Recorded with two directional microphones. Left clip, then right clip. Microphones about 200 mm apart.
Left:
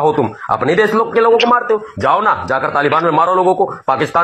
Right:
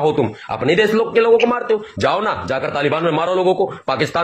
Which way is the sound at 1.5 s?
15° right (ahead or behind).